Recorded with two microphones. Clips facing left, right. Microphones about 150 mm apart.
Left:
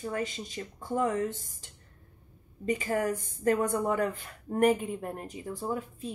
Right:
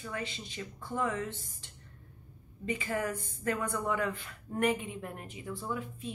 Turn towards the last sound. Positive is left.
turn(degrees=40)  # may be behind; listen again after turning